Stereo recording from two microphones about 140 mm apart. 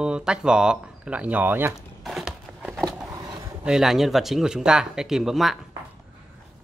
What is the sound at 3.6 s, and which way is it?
Speech, 5° right (ahead or behind).